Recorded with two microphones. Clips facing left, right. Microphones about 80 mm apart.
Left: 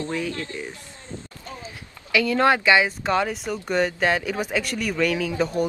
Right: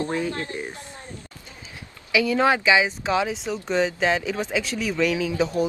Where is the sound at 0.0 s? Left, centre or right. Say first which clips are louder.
Right 2 dB; right.